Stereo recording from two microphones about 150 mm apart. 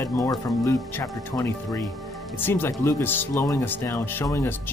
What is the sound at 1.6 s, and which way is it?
Speech, centre (ahead or behind).